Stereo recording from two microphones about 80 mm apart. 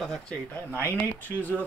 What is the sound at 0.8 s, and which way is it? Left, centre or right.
Speech, left.